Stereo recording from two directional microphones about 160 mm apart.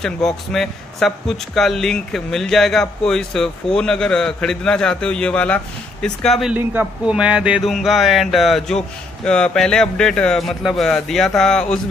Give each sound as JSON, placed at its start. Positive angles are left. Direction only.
{"t": 0.0, "sound": "speech", "side_deg": 5}
{"t": 6.5, "sound": "speech", "side_deg": -10}